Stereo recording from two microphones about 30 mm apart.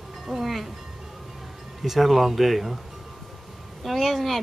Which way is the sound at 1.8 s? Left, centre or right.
Centre.